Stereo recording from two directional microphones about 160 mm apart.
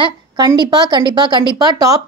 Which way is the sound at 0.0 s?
30° right (ahead or behind).